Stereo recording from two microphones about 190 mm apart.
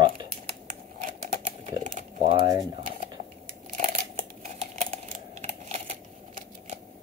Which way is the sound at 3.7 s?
40° right (ahead or behind).